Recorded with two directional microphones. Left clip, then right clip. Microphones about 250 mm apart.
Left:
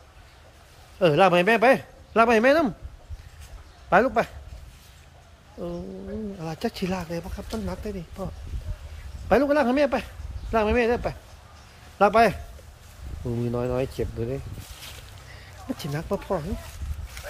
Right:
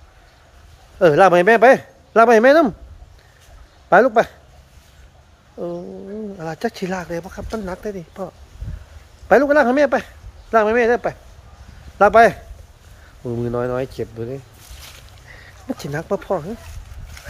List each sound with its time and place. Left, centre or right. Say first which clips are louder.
0.9 s a man's voice: right 7 dB; centre
3.9 s speech: right 7 dB; right
5.6 s a man's voice: right 7 dB; centre
9.3 s a man's voice: right 7 dB; centre
13.4 s a man's voice: right 5 dB; centre
15.3 s speech: right 5 dB; centre
17.2 s horse: even; centre